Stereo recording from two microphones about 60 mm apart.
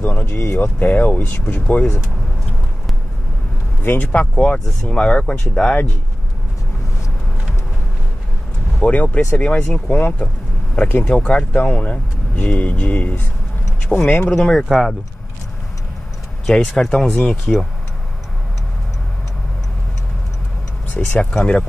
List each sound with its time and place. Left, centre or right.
0.0 s speech: left
3.8 s speech: left
4.1 s speech: left
8.8 s speech: left
14.6 s speech: centre
16.4 s speech: centre
21.2 s speech: centre